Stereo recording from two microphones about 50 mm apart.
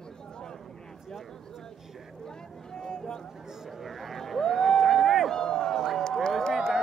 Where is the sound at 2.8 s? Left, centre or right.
Centre.